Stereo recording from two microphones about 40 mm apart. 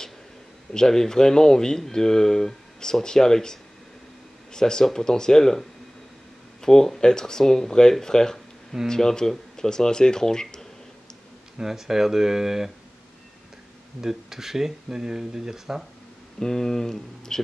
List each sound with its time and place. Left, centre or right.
0.7 s speech: centre
11.5 s speech: centre
14.0 s speech: centre
16.3 s speech: centre